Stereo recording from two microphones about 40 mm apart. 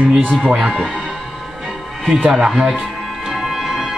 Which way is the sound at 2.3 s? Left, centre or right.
Centre.